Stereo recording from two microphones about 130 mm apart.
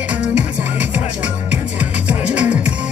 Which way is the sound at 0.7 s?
10° right (ahead or behind).